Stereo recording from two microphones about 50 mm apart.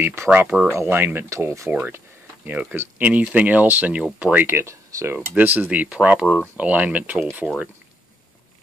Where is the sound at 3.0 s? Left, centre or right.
Right.